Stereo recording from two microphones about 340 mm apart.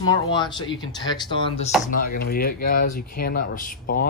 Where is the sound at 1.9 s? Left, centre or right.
Left.